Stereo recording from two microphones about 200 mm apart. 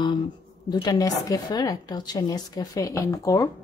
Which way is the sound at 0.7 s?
20° left (ahead or behind).